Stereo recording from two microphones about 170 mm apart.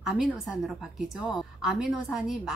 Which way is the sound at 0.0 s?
5° right (ahead or behind).